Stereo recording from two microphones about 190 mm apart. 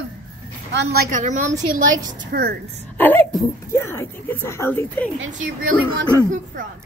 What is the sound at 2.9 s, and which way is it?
Speech, 10° left (ahead or behind).